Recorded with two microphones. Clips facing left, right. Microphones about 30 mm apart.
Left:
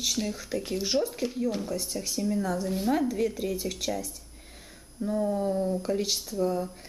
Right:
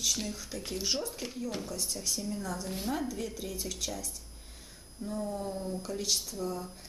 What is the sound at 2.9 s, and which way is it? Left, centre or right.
A woman's voice, centre.